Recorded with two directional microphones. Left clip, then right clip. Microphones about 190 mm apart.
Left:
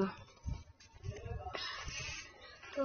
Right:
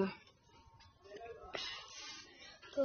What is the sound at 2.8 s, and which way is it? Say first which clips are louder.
Speech: right 2 dB; 15° right (ahead or behind).